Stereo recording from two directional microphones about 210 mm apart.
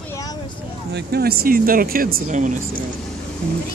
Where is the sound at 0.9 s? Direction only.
50° right (ahead or behind).